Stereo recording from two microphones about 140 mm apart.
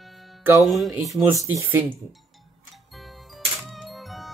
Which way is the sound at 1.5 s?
15° right (ahead or behind).